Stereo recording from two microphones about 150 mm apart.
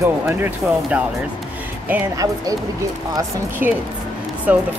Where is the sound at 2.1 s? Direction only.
25° right (ahead or behind).